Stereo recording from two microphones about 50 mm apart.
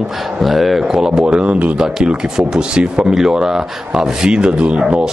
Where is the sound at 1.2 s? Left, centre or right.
Right.